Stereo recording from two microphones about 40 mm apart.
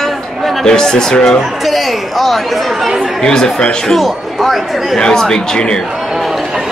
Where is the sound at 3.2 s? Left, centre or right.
Centre.